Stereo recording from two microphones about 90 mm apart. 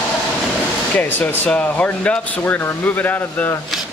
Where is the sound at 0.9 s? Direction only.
20° left (ahead or behind).